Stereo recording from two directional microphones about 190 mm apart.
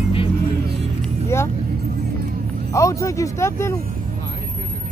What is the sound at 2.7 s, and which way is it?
Speech, 15° left (ahead or behind).